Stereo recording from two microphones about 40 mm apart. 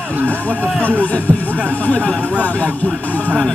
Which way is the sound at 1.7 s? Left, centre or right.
Left.